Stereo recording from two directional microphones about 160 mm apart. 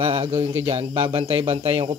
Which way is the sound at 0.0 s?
35° right (ahead or behind).